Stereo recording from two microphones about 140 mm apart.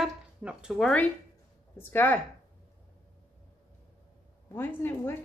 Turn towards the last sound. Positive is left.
turn(degrees=15)  # may be behind; listen again after turning